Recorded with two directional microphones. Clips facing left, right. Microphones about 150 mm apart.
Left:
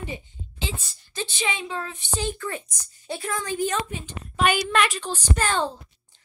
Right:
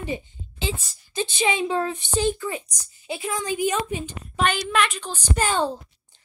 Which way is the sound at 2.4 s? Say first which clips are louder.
Right 2 dB; 15° right (ahead or behind).